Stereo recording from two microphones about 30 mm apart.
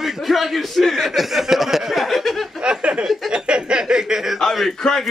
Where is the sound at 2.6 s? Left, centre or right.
Right.